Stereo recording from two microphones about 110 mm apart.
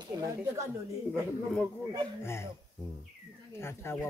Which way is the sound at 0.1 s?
35° right (ahead or behind).